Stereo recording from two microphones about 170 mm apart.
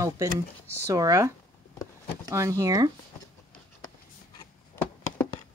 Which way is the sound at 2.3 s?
20° right (ahead or behind).